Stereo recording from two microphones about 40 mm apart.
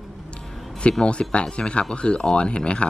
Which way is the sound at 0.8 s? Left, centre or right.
Left.